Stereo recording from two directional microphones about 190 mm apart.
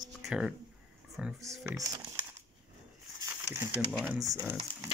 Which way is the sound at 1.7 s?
15° right (ahead or behind).